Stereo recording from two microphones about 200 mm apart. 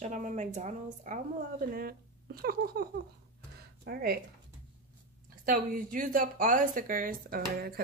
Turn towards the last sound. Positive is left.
turn(degrees=-45)  # may be behind; listen again after turning